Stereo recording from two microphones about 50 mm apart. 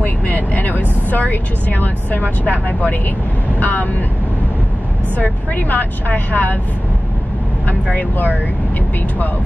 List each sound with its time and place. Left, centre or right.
0.0 s speech: left
5.1 s speech: left
7.9 s speech: left